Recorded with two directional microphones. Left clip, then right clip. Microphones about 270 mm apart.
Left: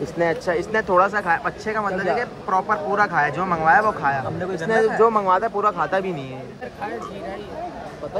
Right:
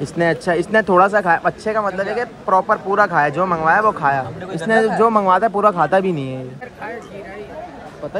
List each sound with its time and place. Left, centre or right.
0.5 s a man's voice: right
4.6 s speech: right